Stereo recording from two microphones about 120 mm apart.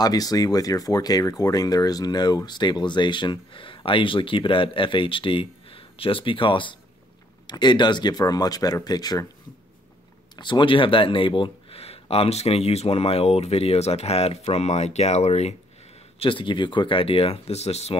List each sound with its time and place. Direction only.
0.0 s speech: 30° left (ahead or behind)
10.3 s speech: 40° left (ahead or behind); by 15.5 s 65° left (ahead or behind)
16.2 s speech: 45° left (ahead or behind); by 17.9 s 65° left (ahead or behind)